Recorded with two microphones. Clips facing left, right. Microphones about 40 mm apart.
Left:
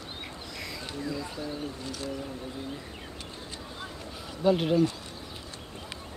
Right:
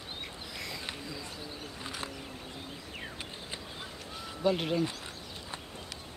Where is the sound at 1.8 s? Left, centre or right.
Right.